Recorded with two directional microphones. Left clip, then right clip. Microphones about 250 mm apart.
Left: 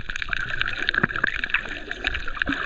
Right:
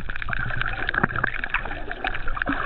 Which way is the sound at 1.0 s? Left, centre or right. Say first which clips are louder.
Even; left.